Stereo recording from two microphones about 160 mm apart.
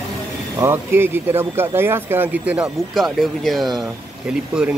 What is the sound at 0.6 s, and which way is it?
Speech, 15° right (ahead or behind).